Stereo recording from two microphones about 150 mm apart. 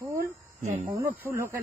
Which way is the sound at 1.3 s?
15° right (ahead or behind).